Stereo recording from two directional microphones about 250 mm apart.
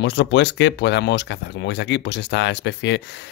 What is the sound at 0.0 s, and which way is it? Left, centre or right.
Speech, left.